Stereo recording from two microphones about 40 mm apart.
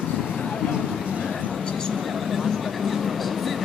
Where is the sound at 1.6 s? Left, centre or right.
Left.